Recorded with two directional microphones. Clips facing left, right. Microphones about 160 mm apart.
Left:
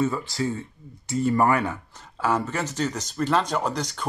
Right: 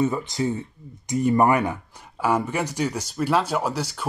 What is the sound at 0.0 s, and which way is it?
Speech, 20° right (ahead or behind).